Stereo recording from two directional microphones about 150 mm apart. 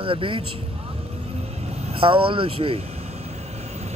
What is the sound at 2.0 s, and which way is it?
Speech, 35° right (ahead or behind).